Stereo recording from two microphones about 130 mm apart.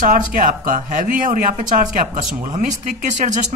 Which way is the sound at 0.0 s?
90° right.